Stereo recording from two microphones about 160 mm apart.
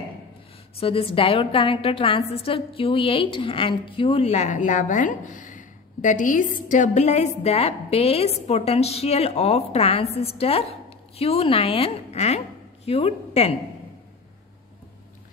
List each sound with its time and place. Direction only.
0.7 s a woman's voice: 35° left (ahead or behind)